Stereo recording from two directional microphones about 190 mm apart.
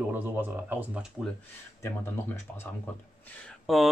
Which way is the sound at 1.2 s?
5° left (ahead or behind).